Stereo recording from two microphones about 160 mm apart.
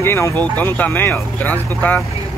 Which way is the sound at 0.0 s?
15° left (ahead or behind).